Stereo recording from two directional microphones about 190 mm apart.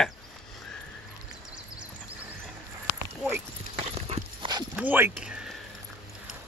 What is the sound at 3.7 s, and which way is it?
Clip-clop, 30° right (ahead or behind).